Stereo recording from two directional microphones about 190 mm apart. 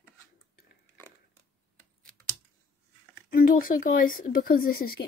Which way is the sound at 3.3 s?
50° left (ahead or behind).